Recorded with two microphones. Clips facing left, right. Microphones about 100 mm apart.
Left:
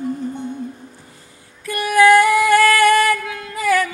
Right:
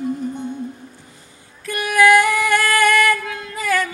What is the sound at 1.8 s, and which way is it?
Female singing, 15° left (ahead or behind).